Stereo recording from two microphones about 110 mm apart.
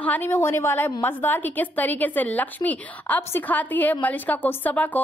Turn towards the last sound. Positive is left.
turn(degrees=15)  # may be behind; listen again after turning